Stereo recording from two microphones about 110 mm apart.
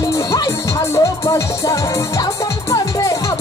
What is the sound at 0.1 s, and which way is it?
Music, 30° left (ahead or behind).